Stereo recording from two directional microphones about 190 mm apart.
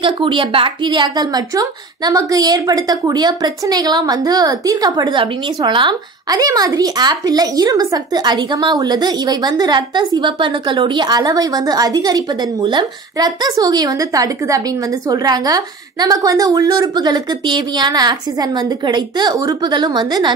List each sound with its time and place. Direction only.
0.0 s a woman's voice: 25° right (ahead or behind)